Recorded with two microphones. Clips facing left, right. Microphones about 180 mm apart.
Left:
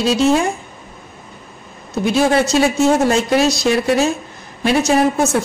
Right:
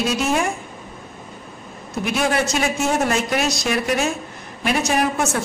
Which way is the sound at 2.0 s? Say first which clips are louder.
Left 6 dB; 30° left (ahead or behind).